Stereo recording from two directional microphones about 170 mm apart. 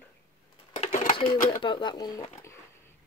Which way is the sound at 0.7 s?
50° left (ahead or behind).